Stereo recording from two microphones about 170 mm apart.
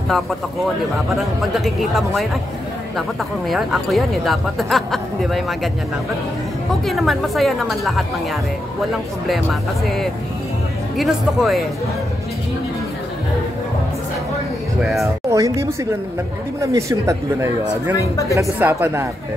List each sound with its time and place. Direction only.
1.1 s speech: centre (ahead or behind)
3.4 s speech: centre (ahead or behind)
6.7 s speech: centre (ahead or behind)
14.8 s speech: centre (ahead or behind)
15.2 s speech: 20° right (ahead or behind)
16.7 s a woman's voice: 15° right (ahead or behind)